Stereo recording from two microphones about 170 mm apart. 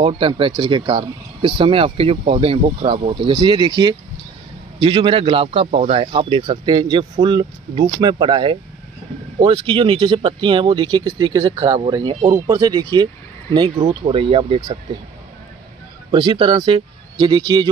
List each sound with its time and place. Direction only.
0.0 s speech: 30° right (ahead or behind)
16.1 s speech: 25° right (ahead or behind)